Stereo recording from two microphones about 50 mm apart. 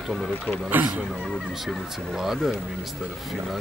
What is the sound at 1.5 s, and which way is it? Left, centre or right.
Speech, centre.